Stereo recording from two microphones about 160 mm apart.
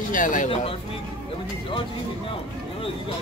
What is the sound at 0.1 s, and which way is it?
Speech, 55° left (ahead or behind).